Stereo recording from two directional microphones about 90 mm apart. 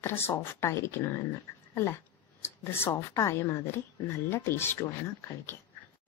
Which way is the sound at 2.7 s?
30° left (ahead or behind).